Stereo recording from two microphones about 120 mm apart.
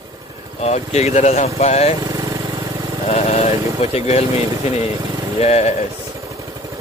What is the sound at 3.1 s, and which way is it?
Speech, 60° left (ahead or behind).